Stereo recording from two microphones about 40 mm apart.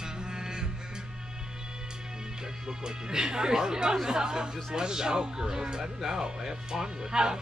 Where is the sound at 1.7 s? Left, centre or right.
Centre.